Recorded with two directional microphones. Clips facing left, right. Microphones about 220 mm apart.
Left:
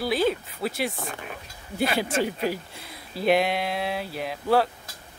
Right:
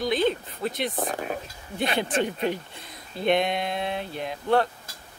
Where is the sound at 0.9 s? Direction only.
45° right (ahead or behind).